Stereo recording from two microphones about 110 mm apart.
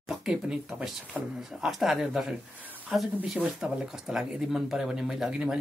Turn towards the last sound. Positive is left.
turn(degrees=-5)  # may be behind; listen again after turning